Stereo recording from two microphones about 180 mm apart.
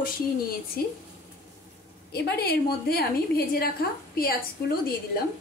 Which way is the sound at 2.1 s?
60° left (ahead or behind).